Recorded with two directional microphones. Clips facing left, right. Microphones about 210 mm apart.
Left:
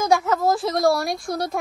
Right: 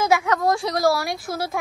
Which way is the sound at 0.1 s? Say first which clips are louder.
Left 1 dB; 5° left (ahead or behind).